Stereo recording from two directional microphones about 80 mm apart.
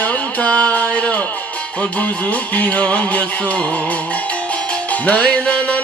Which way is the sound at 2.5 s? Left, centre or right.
Centre.